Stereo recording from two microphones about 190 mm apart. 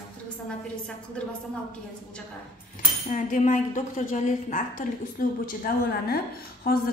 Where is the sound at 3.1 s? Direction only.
45° left (ahead or behind).